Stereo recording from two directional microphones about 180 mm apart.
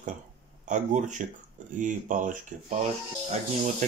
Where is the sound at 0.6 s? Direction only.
45° right (ahead or behind).